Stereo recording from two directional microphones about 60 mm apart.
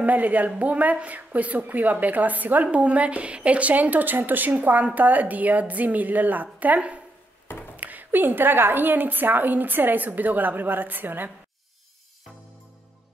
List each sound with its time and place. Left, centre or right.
0.0 s a woman's voice: right